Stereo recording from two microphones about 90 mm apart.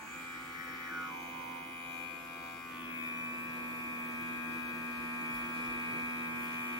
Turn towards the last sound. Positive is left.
turn(degrees=-45)  # may be behind; listen again after turning